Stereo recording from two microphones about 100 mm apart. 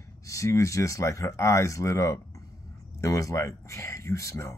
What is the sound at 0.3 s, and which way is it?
Speech, 30° left (ahead or behind).